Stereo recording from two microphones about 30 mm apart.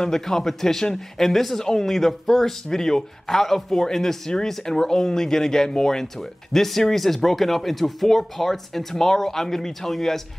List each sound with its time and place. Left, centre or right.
0.0 s speech: centre
1.2 s speech: centre